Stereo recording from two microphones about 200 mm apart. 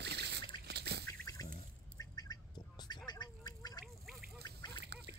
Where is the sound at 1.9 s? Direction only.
20° left (ahead or behind).